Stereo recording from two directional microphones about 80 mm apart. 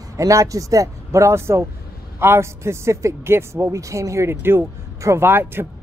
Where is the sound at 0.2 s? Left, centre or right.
Right.